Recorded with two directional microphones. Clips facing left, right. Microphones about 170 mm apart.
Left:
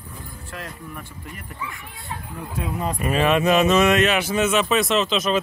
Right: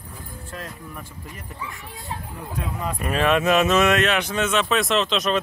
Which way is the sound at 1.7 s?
40° right (ahead or behind).